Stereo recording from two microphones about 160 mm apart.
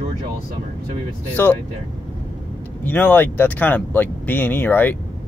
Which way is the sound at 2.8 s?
10° left (ahead or behind).